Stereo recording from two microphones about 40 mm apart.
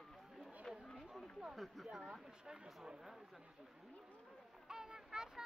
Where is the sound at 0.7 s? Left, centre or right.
Centre.